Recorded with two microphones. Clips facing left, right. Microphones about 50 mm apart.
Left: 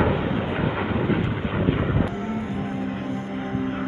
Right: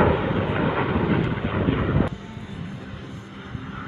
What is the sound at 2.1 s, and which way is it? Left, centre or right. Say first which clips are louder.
Music: left 9 dB; left.